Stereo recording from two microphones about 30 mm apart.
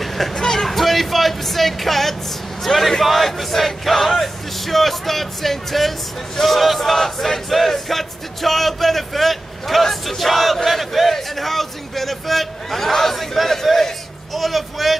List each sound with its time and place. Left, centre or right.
0.0 s vehicle: centre
0.3 s vehicle: left
0.6 s speech: centre
2.6 s music: centre